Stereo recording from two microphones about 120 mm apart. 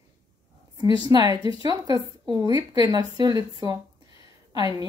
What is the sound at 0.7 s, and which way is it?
Speech, 35° right (ahead or behind).